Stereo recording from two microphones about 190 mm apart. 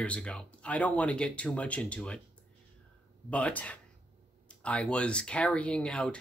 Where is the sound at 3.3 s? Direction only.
5° left (ahead or behind).